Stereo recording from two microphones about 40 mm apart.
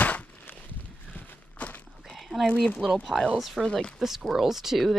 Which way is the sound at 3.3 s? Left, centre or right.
Centre.